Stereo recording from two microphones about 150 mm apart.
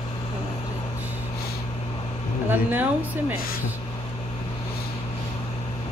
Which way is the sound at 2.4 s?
10° right (ahead or behind).